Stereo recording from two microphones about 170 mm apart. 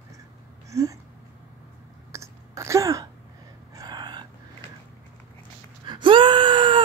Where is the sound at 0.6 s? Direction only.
20° right (ahead or behind).